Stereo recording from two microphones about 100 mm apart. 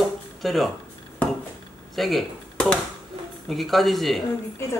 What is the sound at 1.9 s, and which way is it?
Speech, centre (ahead or behind).